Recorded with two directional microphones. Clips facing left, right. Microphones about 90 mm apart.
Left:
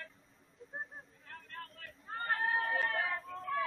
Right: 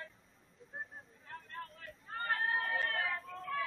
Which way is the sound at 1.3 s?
Centre (ahead or behind).